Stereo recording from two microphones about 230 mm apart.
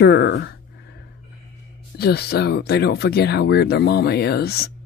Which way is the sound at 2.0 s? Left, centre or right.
Left.